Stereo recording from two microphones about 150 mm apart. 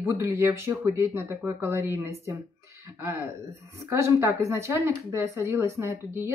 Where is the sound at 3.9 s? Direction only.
15° right (ahead or behind).